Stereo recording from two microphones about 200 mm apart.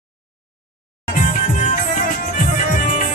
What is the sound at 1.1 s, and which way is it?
Music, 40° left (ahead or behind).